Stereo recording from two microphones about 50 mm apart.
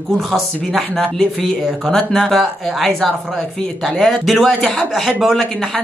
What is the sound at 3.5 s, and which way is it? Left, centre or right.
Speech, centre.